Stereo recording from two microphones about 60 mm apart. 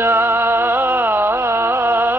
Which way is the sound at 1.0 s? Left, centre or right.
Right.